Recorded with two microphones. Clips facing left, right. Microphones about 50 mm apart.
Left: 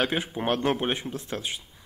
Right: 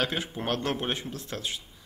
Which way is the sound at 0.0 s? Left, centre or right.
Centre.